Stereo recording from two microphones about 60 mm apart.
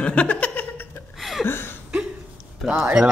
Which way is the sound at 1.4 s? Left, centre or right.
Left.